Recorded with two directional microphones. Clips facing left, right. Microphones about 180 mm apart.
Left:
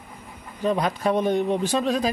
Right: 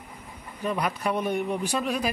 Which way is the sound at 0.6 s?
30° left (ahead or behind).